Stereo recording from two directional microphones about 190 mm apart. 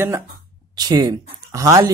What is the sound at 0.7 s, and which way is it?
Speech, 20° right (ahead or behind).